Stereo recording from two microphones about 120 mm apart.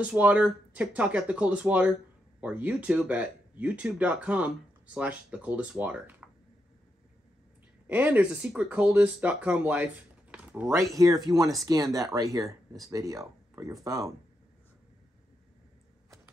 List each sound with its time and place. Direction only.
0.0 s speech: 10° right (ahead or behind)
7.8 s speech: 15° right (ahead or behind)
10.3 s a sound: 10° right (ahead or behind)
11.2 s speech: 30° right (ahead or behind)